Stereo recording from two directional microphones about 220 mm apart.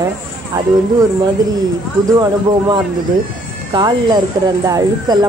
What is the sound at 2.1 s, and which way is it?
Speech, 20° right (ahead or behind).